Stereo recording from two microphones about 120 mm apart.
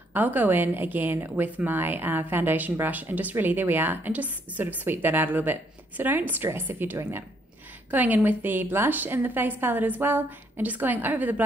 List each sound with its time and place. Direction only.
0.1 s a woman's voice: 15° right (ahead or behind)